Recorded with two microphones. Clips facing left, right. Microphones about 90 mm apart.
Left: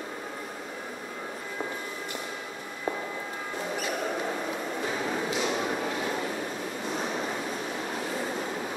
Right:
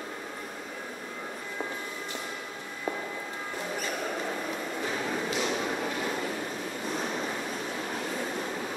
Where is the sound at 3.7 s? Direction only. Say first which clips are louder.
Left 3 dB; 10° left (ahead or behind).